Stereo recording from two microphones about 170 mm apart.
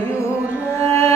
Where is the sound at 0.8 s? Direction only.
15° left (ahead or behind).